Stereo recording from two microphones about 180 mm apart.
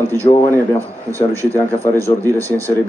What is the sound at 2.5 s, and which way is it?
Speech, 15° right (ahead or behind).